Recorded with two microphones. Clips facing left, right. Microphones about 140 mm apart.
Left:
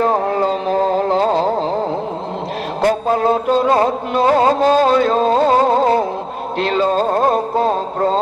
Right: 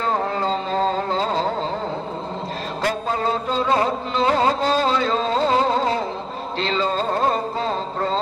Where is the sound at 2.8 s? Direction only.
55° left (ahead or behind).